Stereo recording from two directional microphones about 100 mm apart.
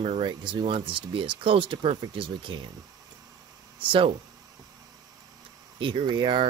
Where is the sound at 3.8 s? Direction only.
60° right (ahead or behind).